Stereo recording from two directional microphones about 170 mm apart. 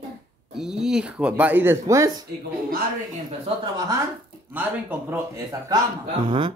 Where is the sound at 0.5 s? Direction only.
5° right (ahead or behind).